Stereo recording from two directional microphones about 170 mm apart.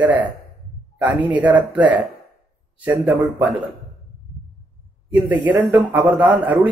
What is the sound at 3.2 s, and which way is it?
Speech, centre (ahead or behind).